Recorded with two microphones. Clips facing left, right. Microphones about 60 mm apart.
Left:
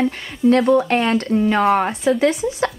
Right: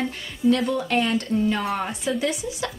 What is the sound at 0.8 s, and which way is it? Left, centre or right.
Speech, left.